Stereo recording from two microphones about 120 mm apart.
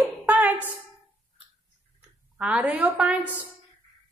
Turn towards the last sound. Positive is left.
turn(degrees=-10)  # may be behind; listen again after turning